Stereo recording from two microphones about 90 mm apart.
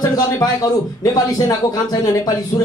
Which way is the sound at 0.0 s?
45° left (ahead or behind).